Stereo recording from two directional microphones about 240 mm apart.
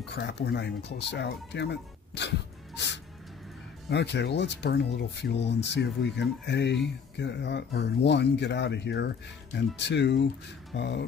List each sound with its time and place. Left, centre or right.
0.1 s speech: left